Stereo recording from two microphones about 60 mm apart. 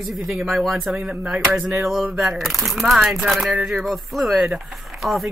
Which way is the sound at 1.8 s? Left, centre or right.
Centre.